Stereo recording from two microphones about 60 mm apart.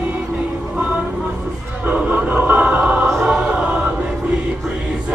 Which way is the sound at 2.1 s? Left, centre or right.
Right.